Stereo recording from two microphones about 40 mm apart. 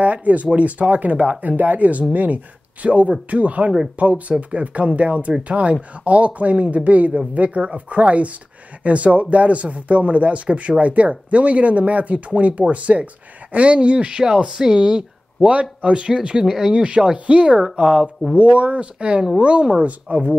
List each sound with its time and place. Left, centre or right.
0.0 s speech: right; by 16.7 s centre
16.7 s speech: right
18.3 s speech: right